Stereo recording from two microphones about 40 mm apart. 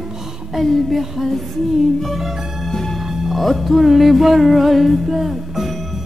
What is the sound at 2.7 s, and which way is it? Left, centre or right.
Music, centre.